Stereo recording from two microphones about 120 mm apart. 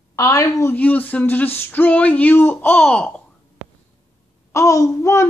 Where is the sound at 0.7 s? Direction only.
15° left (ahead or behind).